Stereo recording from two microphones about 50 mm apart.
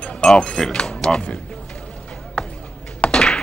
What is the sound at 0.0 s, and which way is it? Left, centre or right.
Music, left.